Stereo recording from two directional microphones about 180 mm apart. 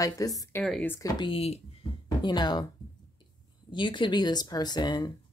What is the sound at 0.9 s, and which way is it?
Speech, 20° left (ahead or behind).